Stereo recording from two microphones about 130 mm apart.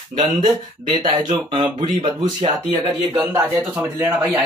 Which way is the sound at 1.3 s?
50° right (ahead or behind).